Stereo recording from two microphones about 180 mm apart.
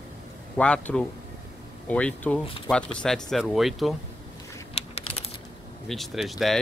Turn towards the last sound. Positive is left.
turn(degrees=0)  # may be behind; listen again after turning